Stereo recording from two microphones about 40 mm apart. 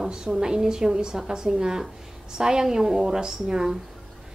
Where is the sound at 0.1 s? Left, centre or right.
Centre.